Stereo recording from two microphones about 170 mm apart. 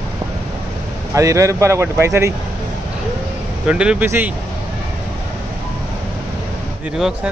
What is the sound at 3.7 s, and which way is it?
Speech, 5° right (ahead or behind).